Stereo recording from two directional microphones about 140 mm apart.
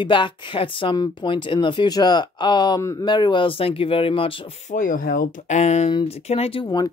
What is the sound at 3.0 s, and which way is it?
Speech, 35° left (ahead or behind).